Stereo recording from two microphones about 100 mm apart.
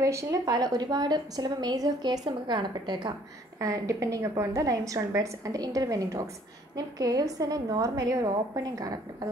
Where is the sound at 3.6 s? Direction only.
35° right (ahead or behind).